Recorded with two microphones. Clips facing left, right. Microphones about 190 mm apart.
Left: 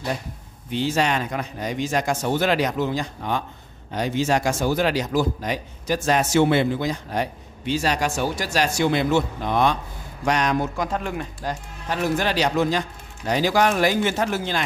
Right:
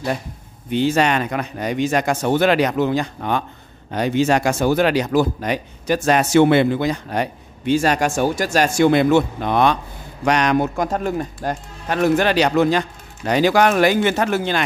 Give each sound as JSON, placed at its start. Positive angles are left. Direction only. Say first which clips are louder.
{"t": 0.7, "sound": "a man's voice", "louder": "right 5 dB", "side_deg": -60}
{"t": 10.8, "sound": "speech", "louder": "right 5 dB", "side_deg": -40}
{"t": 11.9, "sound": "speech", "louder": "right 6 dB", "side_deg": -65}